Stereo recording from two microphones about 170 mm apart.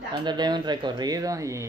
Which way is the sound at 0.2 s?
25° right (ahead or behind).